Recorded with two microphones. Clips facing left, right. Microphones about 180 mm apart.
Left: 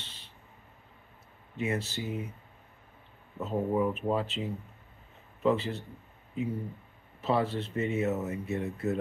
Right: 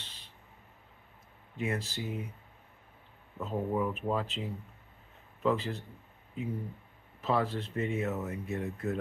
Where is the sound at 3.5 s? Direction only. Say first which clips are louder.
Left 3 dB; 15° left (ahead or behind).